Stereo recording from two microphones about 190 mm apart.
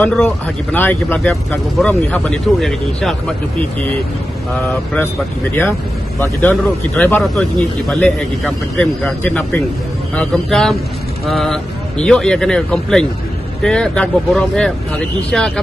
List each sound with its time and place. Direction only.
0.0 s speech: 10° left (ahead or behind)
4.9 s speech: 10° left (ahead or behind)